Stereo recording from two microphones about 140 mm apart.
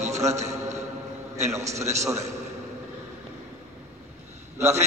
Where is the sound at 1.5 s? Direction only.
20° right (ahead or behind).